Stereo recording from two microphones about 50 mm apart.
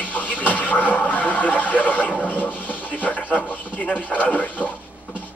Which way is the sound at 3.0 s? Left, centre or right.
Left.